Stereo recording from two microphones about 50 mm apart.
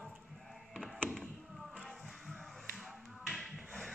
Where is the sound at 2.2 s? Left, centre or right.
Centre.